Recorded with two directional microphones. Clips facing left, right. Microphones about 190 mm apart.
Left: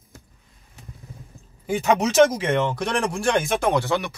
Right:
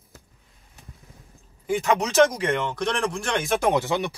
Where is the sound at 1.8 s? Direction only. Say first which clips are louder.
Left 3 dB; 15° left (ahead or behind).